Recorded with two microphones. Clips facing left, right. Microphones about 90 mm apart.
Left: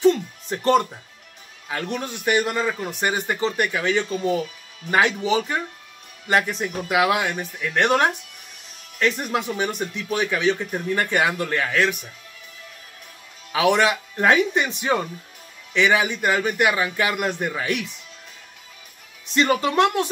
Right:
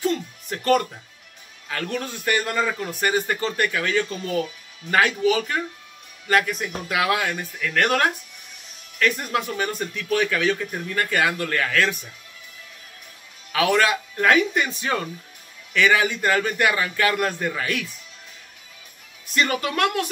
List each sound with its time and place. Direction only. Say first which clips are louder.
0.0 s music: left 7 dB; 25° left (ahead or behind)
1.7 s a man's voice: left 1 dB; 15° left (ahead or behind)
13.5 s a man's voice: left 1 dB; 20° left (ahead or behind)
19.2 s speech: left 3 dB; 25° left (ahead or behind)